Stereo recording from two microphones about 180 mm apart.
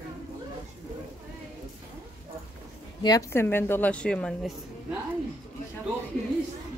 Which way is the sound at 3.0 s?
15° left (ahead or behind).